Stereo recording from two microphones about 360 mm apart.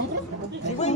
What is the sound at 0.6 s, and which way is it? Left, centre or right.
Speech, centre.